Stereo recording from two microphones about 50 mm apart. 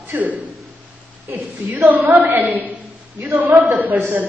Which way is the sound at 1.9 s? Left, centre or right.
Right.